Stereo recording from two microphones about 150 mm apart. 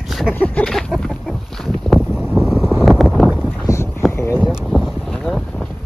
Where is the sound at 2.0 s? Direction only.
5° right (ahead or behind).